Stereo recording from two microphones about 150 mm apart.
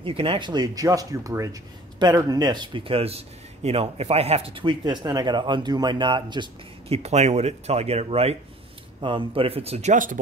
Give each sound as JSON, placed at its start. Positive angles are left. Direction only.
{"t": 0.0, "sound": "speech", "side_deg": -35}
{"t": 7.0, "sound": "speech", "side_deg": -45}